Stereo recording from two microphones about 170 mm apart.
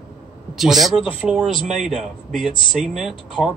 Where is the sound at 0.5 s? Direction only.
Centre (ahead or behind).